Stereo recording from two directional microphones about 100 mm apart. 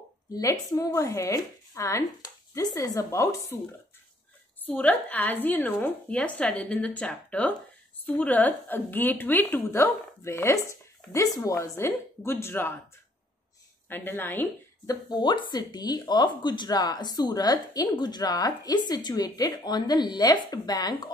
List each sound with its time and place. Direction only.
0.3 s speech: 30° left (ahead or behind)
4.6 s a woman's voice: 15° left (ahead or behind)
13.8 s a woman's voice: 20° left (ahead or behind)
14.9 s speech: 45° left (ahead or behind)